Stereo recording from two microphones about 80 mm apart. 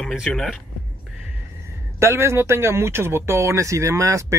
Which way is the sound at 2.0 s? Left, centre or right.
Right.